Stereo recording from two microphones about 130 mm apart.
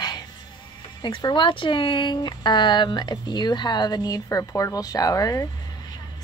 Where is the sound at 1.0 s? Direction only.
35° left (ahead or behind).